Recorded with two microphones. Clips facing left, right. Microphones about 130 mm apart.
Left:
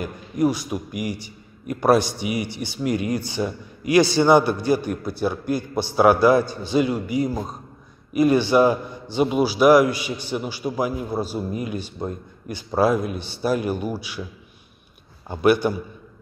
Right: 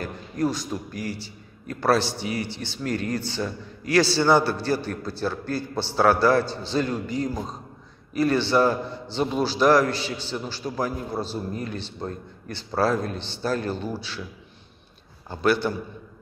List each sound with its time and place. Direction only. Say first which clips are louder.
0.0 s a man's voice: left 4 dB; 10° left (ahead or behind)
15.2 s a man's voice: left 4 dB; 15° left (ahead or behind)